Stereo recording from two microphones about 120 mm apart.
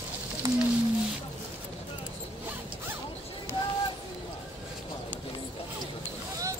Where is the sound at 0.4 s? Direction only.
25° right (ahead or behind).